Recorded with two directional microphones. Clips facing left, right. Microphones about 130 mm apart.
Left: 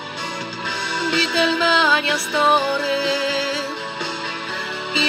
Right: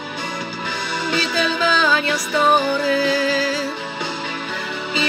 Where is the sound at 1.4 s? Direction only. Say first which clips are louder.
Left 1 dB; 20° left (ahead or behind).